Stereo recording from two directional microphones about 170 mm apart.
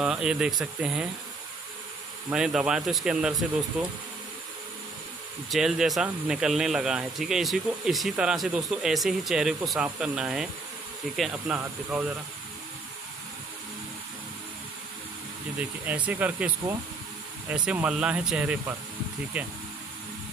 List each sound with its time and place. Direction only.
0.0 s speech: 5° right (ahead or behind)
2.2 s speech: 5° right (ahead or behind)
5.5 s speech: centre (ahead or behind)
15.8 s speech: 10° right (ahead or behind)